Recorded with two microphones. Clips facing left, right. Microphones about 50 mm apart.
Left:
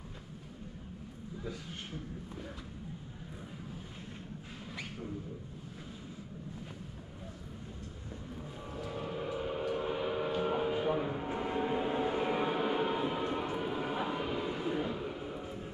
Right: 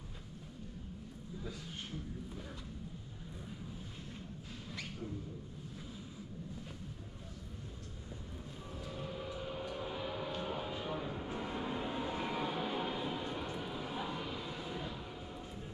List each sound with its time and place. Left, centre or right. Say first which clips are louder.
8.4 s train: left 6 dB; left